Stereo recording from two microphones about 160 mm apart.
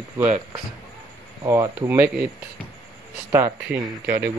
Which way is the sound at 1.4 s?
15° right (ahead or behind).